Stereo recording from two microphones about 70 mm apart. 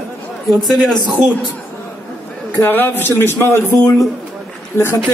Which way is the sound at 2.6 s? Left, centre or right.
Left.